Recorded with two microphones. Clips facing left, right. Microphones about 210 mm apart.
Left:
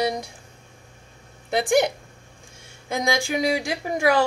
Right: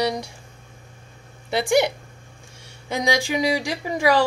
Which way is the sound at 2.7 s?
50° left (ahead or behind).